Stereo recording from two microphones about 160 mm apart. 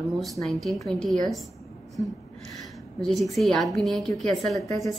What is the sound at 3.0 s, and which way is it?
A woman's voice, centre (ahead or behind).